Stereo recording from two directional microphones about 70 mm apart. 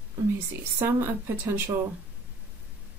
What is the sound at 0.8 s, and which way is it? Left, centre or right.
Speech, right.